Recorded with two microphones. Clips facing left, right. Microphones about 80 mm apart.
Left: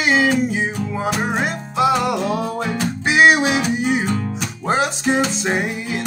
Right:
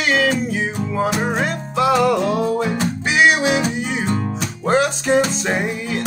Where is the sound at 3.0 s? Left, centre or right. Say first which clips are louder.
Left 2 dB; left.